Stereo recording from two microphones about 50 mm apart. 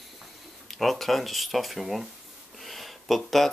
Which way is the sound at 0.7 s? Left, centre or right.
Centre.